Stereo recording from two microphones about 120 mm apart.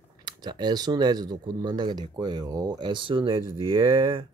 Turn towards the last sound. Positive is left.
turn(degrees=-45)  # may be behind; listen again after turning